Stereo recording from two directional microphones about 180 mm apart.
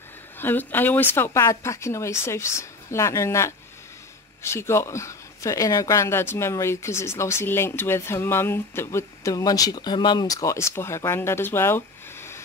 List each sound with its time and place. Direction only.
0.4 s speech: 10° left (ahead or behind)